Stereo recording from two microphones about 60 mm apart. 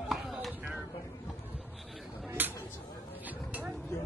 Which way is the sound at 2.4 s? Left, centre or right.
Right.